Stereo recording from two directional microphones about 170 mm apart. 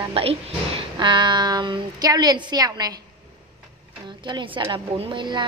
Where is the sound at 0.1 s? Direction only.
35° right (ahead or behind).